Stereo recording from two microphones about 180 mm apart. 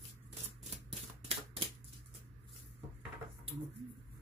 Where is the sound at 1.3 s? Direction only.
35° right (ahead or behind).